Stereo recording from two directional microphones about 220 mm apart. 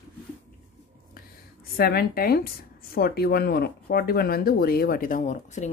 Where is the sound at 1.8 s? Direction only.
45° left (ahead or behind).